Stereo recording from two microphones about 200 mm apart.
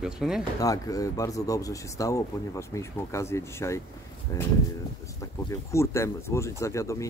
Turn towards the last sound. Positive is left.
turn(degrees=15)  # may be behind; listen again after turning